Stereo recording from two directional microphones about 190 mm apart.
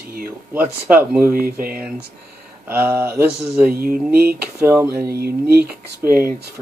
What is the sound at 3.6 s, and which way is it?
Speech, 50° right (ahead or behind).